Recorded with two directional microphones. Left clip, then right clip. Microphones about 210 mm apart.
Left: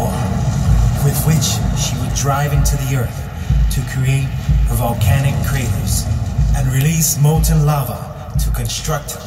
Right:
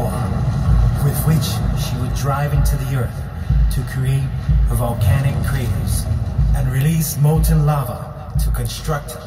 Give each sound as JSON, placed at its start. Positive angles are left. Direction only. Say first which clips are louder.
{"t": 0.0, "sound": "vehicle", "louder": "left 3 dB", "side_deg": 15}
{"t": 5.0, "sound": "a man's voice", "louder": "left 3 dB", "side_deg": 20}